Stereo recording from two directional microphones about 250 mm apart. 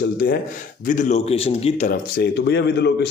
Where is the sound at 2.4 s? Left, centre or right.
Left.